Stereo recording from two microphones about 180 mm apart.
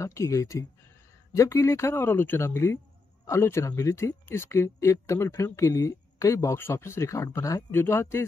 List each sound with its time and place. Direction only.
0.0 s speech: 15° left (ahead or behind)